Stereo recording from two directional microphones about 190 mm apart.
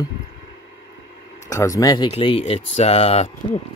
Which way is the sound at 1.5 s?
15° left (ahead or behind).